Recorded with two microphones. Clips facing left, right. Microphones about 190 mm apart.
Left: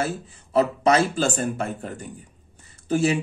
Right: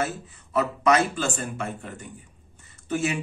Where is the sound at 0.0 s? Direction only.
30° left (ahead or behind).